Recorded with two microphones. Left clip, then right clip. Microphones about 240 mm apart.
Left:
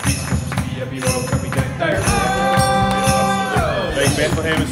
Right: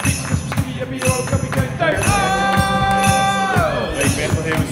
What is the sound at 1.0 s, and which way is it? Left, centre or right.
Music, centre.